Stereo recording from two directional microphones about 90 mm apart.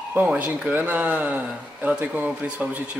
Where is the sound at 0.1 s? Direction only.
20° right (ahead or behind).